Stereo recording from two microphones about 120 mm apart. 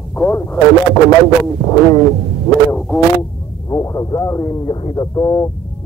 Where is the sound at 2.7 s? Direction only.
10° left (ahead or behind).